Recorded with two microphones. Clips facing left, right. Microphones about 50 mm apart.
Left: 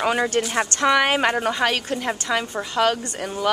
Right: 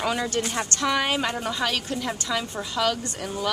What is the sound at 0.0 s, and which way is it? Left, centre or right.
A woman's voice, left.